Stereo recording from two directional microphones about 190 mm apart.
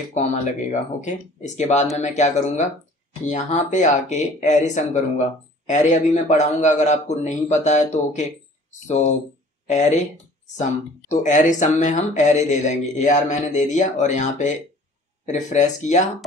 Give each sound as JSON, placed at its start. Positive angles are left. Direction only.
{"t": 0.1, "sound": "speech", "side_deg": 40}
{"t": 11.1, "sound": "speech", "side_deg": 40}